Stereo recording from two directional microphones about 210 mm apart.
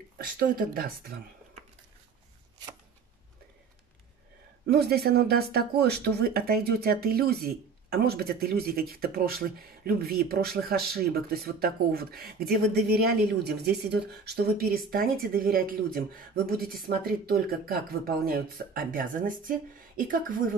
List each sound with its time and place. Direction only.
0.2 s speech: 45° right (ahead or behind)
4.6 s a woman's voice: 50° right (ahead or behind)